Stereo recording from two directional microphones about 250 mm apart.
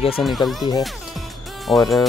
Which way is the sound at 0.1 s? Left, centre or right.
Centre.